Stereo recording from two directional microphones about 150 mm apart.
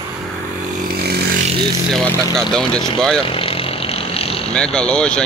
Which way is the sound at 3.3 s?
40° left (ahead or behind).